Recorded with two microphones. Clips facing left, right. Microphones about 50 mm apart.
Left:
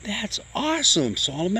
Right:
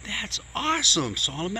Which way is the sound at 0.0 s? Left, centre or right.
Right.